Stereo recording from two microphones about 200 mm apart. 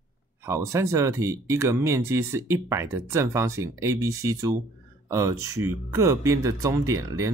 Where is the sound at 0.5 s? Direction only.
15° right (ahead or behind).